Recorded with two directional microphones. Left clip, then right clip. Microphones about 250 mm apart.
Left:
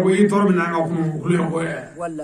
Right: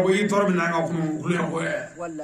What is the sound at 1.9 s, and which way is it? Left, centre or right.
Speech, left.